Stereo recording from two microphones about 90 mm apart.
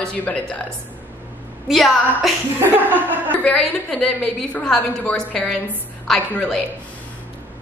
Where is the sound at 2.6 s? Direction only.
20° right (ahead or behind).